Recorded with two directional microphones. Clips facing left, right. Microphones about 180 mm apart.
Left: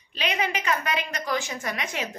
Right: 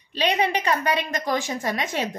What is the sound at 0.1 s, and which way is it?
A woman's voice, 35° right (ahead or behind).